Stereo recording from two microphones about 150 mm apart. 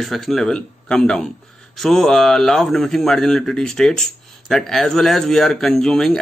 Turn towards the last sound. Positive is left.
turn(degrees=5)  # may be behind; listen again after turning